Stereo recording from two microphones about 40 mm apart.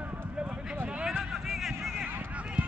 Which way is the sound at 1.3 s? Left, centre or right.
Centre.